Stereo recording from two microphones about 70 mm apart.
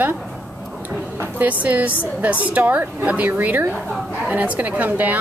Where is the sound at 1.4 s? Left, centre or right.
Right.